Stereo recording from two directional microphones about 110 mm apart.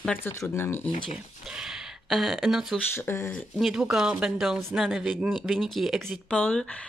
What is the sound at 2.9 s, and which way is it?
Speech, 25° left (ahead or behind).